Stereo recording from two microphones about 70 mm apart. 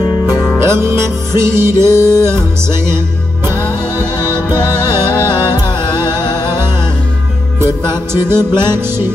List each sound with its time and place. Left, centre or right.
0.6 s music: right
7.6 s music: right